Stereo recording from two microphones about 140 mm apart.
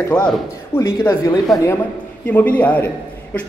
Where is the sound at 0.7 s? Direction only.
15° left (ahead or behind).